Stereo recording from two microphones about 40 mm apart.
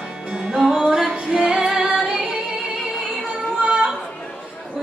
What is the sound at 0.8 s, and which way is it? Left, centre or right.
Music, right.